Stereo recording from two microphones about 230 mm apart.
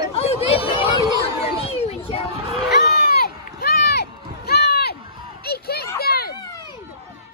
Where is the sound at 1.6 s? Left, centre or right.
Left.